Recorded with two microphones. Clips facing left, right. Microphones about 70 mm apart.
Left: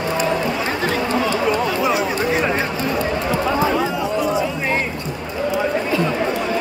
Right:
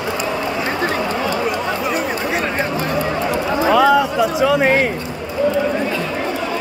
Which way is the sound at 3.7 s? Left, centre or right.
Right.